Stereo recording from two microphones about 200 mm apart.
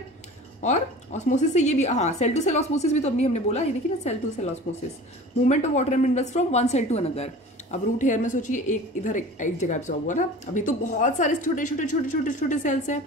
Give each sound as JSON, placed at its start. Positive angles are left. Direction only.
{"t": 0.6, "sound": "a woman's voice", "side_deg": 35}
{"t": 5.5, "sound": "a woman's voice", "side_deg": 35}